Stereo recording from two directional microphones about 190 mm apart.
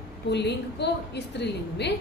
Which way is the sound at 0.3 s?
65° left (ahead or behind).